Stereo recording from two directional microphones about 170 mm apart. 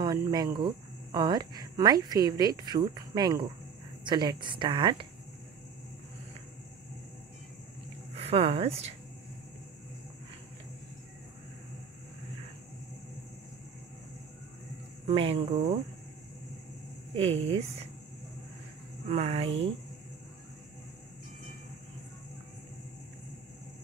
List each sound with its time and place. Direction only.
0.0 s speech: 25° right (ahead or behind)
8.1 s a woman's voice: 35° right (ahead or behind)
15.0 s speech: 35° right (ahead or behind)
17.1 s speech: 35° right (ahead or behind)
19.0 s speech: 35° right (ahead or behind)